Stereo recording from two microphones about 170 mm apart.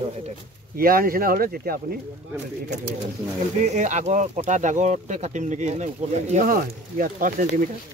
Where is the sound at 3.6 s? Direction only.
45° right (ahead or behind).